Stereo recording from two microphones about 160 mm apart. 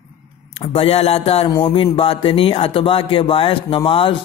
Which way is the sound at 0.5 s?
35° left (ahead or behind).